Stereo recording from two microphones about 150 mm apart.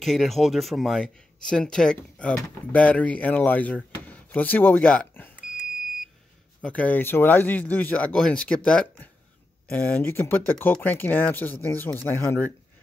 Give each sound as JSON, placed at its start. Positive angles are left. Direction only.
{"t": 0.0, "sound": "speech", "side_deg": 0}
{"t": 6.6, "sound": "speech", "side_deg": 10}